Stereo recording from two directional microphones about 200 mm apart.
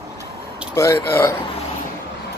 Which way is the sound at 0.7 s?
15° left (ahead or behind).